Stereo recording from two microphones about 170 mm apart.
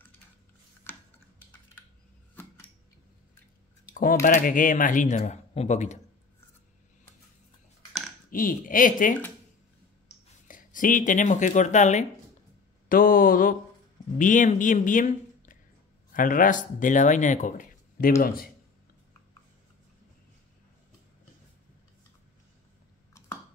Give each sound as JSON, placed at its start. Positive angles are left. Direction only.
{"t": 0.9, "sound": "a sound", "side_deg": 15}
{"t": 3.9, "sound": "speech", "side_deg": 50}
{"t": 8.3, "sound": "speech", "side_deg": 55}
{"t": 10.5, "sound": "speech", "side_deg": 50}
{"t": 12.8, "sound": "speech", "side_deg": 55}